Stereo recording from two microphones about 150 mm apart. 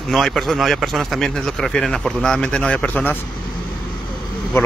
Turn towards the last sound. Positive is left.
turn(degrees=15)  # may be behind; listen again after turning